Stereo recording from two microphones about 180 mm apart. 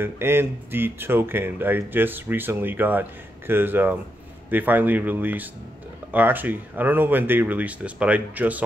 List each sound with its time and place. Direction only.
0.0 s speech: 15° right (ahead or behind)